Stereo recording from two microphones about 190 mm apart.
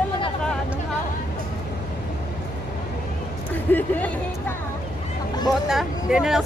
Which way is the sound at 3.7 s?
10° left (ahead or behind).